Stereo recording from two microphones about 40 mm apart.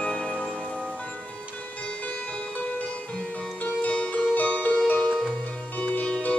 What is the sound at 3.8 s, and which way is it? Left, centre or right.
Music, left.